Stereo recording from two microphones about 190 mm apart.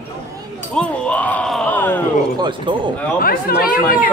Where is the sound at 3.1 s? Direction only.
50° left (ahead or behind).